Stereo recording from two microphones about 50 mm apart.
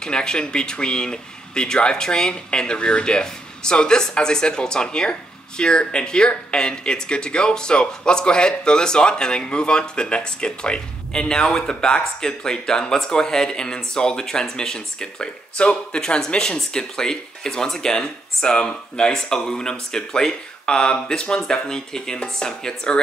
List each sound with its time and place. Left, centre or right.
0.0 s speech: centre